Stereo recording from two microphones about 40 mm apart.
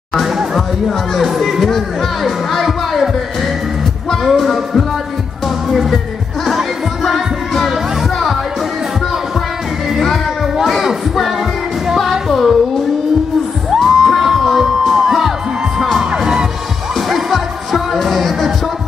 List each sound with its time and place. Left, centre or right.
0.6 s speech: centre
2.2 s music: centre
4.3 s speech: centre
5.7 s music: centre
7.1 s music: centre
10.6 s music: centre
13.7 s music: centre
16.0 s crowd: centre
17.1 s music: centre